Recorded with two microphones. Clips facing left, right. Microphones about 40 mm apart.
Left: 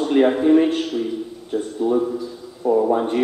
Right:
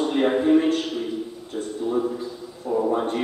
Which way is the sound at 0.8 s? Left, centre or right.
Centre.